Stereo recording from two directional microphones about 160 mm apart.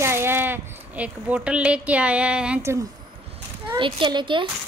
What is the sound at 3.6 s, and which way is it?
Speech, 30° right (ahead or behind).